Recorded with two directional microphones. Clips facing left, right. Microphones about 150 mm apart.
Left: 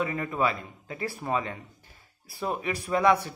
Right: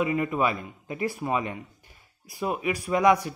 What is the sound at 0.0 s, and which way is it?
Speech, 15° right (ahead or behind).